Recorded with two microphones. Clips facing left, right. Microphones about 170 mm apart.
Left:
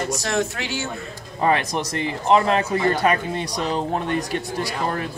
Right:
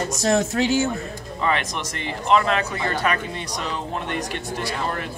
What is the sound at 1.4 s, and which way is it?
Speech, 35° left (ahead or behind).